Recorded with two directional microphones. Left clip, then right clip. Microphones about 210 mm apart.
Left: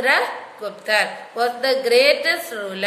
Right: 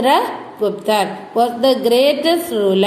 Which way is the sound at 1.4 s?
10° right (ahead or behind).